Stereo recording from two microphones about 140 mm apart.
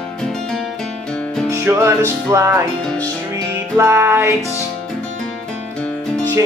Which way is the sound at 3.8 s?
20° right (ahead or behind).